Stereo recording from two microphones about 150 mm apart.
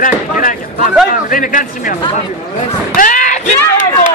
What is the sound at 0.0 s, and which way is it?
Speech, 65° left (ahead or behind).